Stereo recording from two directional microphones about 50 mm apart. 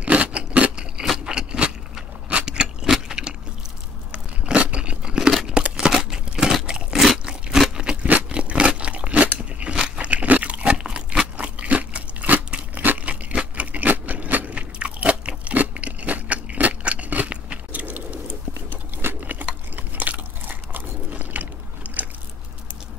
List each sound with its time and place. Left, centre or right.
0.0 s a sound: right
1.0 s scrape: centre
1.3 s vehicle: centre
2.9 s keys jangling: centre
4.1 s biting: right
5.5 s a sound: right
7.5 s a sound: centre
7.8 s crunch: right
9.6 s biting: right
9.9 s crunch: right
12.8 s a sound: right
18.9 s sewing machine: right
19.7 s biting: right